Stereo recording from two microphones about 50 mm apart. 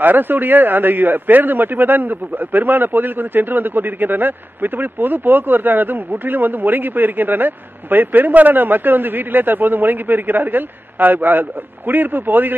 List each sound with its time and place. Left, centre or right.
0.0 s a man's voice: right